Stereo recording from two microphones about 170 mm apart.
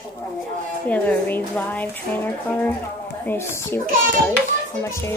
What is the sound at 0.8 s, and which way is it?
Speech, 10° left (ahead or behind).